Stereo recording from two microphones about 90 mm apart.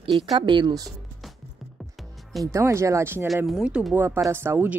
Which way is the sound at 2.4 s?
35° right (ahead or behind).